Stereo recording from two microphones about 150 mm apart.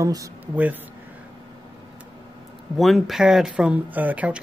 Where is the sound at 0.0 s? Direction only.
20° right (ahead or behind).